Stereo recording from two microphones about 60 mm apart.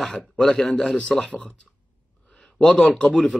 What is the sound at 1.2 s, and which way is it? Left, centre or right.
Speech, left.